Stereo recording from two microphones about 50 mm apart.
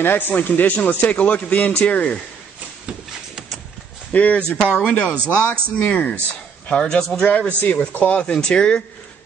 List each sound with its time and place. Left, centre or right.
0.0 s a man's voice: left
4.1 s speech: left
5.3 s a man's voice: left
6.7 s speech: centre
7.3 s a man's voice: left
8.2 s speech: centre